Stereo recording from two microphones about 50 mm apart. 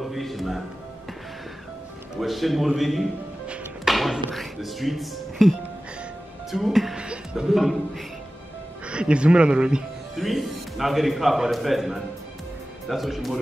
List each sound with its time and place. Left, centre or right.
0.0 s music: centre
2.1 s a man's voice: centre
3.8 s thump: centre
4.3 s speech: centre
6.5 s speech: centre
7.0 s music: centre
7.4 s a man's voice: centre
8.8 s speech: right
10.1 s a man's voice: centre